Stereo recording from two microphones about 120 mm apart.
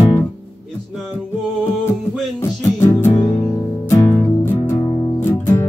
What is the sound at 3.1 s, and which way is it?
Music, 50° left (ahead or behind).